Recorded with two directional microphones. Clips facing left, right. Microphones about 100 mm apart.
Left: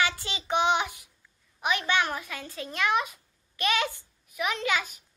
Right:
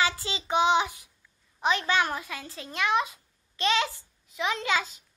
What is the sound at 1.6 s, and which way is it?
A child's voice, 30° right (ahead or behind).